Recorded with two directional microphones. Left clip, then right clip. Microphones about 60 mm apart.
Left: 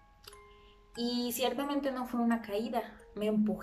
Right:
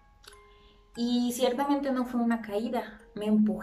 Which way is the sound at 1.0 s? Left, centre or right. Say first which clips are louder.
Right 5 dB; left.